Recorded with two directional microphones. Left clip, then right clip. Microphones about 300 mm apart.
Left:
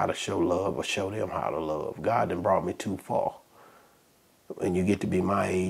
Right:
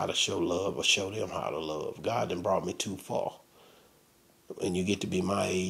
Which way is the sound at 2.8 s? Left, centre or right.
Left.